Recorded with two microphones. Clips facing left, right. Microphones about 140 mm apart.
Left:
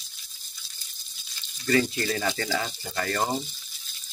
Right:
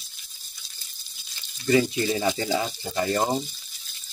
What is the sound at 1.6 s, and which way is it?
Speech, 15° right (ahead or behind).